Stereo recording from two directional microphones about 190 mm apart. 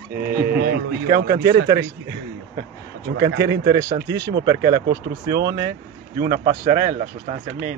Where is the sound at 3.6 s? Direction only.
20° right (ahead or behind).